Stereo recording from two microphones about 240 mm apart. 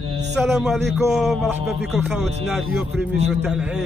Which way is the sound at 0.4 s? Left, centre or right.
Centre.